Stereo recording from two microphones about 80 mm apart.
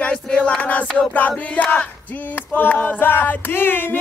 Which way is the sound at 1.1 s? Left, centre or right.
Centre.